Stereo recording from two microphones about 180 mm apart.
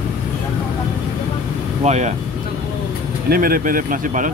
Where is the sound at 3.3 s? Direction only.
55° right (ahead or behind).